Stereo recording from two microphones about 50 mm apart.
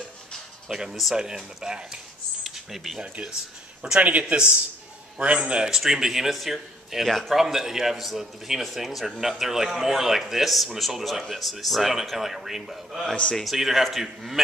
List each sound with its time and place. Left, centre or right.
0.7 s speech: centre
2.4 s a sound: centre
3.0 s a man's voice: right
5.7 s a man's voice: centre
13.1 s a man's voice: left
13.4 s a man's voice: centre